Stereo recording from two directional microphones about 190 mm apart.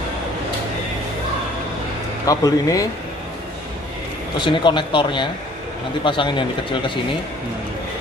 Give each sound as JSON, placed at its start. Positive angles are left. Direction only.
{"t": 2.2, "sound": "a man's voice", "side_deg": 20}
{"t": 4.4, "sound": "speech", "side_deg": 25}